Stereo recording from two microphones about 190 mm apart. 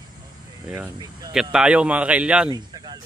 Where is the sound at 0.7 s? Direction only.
10° right (ahead or behind).